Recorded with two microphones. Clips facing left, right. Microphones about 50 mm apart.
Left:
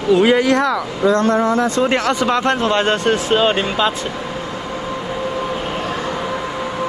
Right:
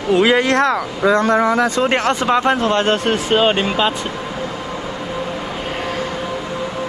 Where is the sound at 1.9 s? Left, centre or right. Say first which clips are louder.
Even; right.